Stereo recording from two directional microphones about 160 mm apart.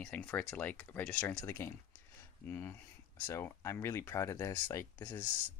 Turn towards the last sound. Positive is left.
turn(degrees=30)  # may be behind; listen again after turning